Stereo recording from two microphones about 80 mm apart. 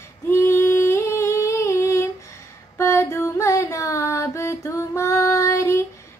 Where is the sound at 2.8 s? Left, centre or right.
Left.